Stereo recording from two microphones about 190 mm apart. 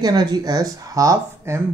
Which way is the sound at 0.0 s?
20° right (ahead or behind).